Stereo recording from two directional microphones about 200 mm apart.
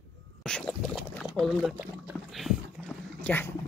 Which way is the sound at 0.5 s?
5° left (ahead or behind).